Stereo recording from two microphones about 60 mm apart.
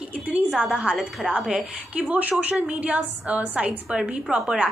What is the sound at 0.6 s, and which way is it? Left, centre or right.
A woman's voice, centre.